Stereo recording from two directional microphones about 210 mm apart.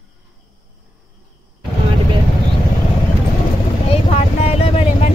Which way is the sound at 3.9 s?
30° left (ahead or behind).